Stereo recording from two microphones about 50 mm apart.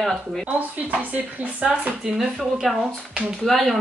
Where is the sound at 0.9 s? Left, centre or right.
Right.